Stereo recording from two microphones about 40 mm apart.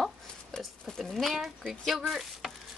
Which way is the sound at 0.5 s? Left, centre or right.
Centre.